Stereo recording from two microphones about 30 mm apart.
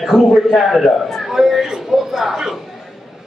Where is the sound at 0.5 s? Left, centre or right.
Centre.